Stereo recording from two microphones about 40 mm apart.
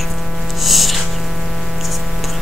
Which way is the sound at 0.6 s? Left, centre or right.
Centre.